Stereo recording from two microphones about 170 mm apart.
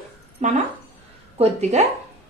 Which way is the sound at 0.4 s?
40° right (ahead or behind).